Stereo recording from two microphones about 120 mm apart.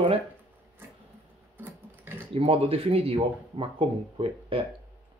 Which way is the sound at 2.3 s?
50° right (ahead or behind).